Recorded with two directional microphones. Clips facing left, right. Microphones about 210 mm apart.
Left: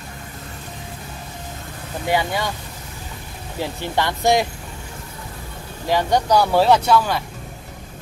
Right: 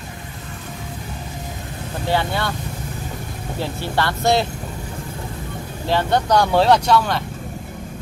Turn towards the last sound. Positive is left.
turn(degrees=5)  # may be behind; listen again after turning